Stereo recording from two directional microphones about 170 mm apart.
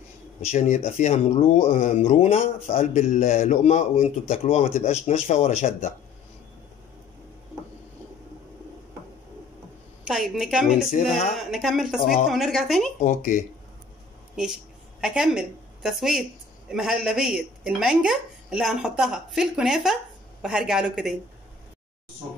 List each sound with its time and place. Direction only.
0.4 s a man's voice: 45° left (ahead or behind)
10.0 s a woman's voice: centre (ahead or behind)
13.0 s a man's voice: 50° left (ahead or behind)
14.3 s a woman's voice: 5° right (ahead or behind)